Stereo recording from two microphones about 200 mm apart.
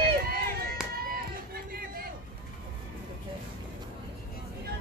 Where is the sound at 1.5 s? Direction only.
50° right (ahead or behind).